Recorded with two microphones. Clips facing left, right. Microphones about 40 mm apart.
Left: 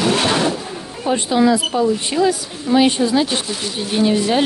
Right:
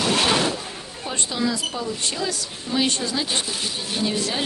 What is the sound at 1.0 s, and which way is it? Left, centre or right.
A woman's voice, left.